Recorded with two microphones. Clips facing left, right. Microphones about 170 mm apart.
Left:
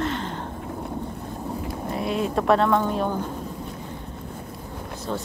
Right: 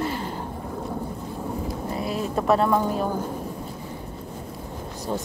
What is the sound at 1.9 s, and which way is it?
Speech, centre (ahead or behind).